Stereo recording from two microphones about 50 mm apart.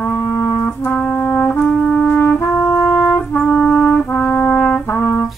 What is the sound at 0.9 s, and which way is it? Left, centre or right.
Trumpet, left.